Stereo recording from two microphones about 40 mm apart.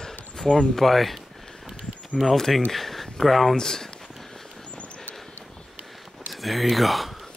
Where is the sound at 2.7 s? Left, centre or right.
Centre.